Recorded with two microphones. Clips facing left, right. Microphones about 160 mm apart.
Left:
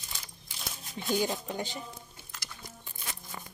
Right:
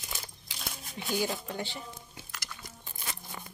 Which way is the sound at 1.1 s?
15° left (ahead or behind).